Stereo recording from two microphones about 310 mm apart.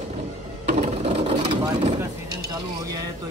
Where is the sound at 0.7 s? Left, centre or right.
Right.